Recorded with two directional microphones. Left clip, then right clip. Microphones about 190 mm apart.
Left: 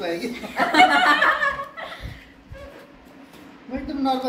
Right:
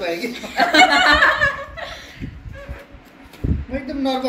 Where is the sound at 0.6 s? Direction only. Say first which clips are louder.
Right 3 dB; 30° right (ahead or behind).